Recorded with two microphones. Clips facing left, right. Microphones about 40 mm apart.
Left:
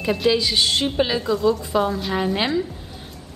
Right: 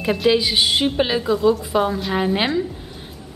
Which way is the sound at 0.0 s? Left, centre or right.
Centre.